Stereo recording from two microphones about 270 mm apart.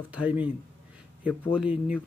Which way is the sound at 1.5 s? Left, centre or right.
Centre.